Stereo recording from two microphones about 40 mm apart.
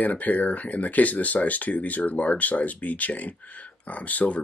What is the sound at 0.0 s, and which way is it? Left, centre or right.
Speech, left.